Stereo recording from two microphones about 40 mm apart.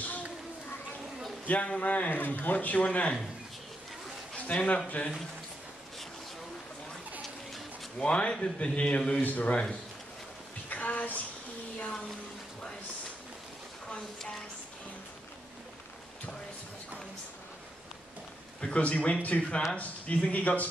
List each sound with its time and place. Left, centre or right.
1.5 s speech: left
4.3 s a sound: left
4.8 s speech: left
8.0 s speech: left
9.2 s speech: left
9.5 s speech: left
10.7 s a sound: left
13.8 s speech: centre
18.6 s speech: left